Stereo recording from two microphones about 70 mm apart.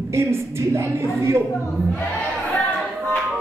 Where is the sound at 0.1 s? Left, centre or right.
Right.